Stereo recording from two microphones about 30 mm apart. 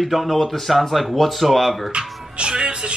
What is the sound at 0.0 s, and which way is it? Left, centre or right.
A man's voice, centre.